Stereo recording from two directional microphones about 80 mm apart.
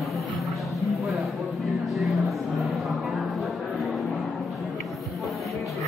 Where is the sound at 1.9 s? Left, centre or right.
Centre.